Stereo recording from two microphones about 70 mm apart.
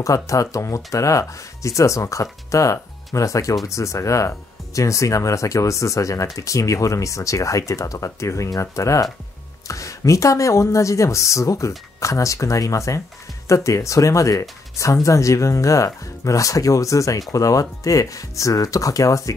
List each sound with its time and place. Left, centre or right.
0.0 s speech: left